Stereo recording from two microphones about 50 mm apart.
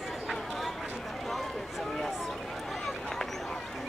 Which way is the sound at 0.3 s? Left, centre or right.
Centre.